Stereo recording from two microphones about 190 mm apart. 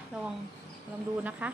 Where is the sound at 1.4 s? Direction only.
5° right (ahead or behind).